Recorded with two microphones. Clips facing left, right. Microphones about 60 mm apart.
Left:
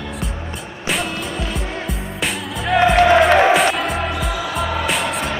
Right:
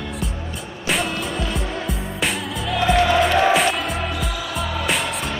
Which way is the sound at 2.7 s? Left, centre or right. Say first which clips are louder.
Left 5 dB; left.